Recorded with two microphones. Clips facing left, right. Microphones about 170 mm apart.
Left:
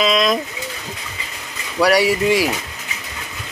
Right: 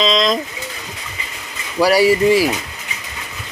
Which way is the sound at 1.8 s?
5° right (ahead or behind).